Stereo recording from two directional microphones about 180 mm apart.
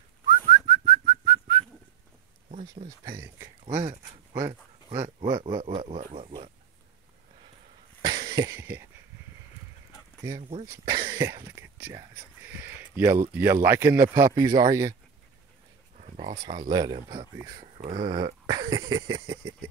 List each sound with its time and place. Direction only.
0.6 s whistling: 25° right (ahead or behind)
3.0 s speech: 15° right (ahead or behind)
3.8 s speech: 30° right (ahead or behind)
4.3 s speech: 15° right (ahead or behind); by 6.5 s 35° right (ahead or behind)
8.0 s a sound: 20° right (ahead or behind)
10.5 s speech: 20° right (ahead or behind)
12.4 s a sound: 10° right (ahead or behind)
13.4 s speech: 15° right (ahead or behind)
16.2 s speech: 25° right (ahead or behind)